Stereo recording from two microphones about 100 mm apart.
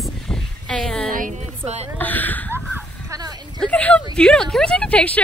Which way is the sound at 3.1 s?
40° right (ahead or behind).